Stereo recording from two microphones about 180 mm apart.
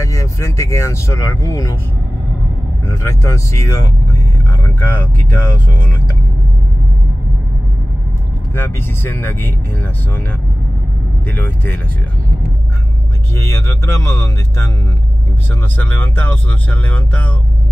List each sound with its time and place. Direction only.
0.0 s speech: 15° left (ahead or behind)
2.9 s speech: 15° left (ahead or behind)
8.5 s speech: 15° left (ahead or behind)
11.2 s speech: 10° left (ahead or behind)
13.4 s speech: 15° left (ahead or behind)
15.8 s speech: 10° left (ahead or behind)